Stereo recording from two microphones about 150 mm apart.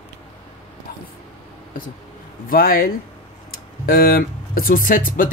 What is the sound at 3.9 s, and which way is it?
Speech, 80° left.